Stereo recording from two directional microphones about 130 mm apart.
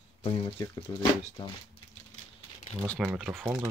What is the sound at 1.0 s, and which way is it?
Speech, 35° left (ahead or behind).